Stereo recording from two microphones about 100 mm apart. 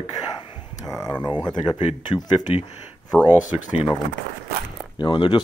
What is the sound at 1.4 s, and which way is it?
Speech, 50° left (ahead or behind).